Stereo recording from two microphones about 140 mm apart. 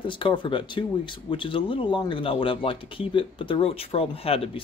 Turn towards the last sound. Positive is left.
turn(degrees=45)  # may be behind; listen again after turning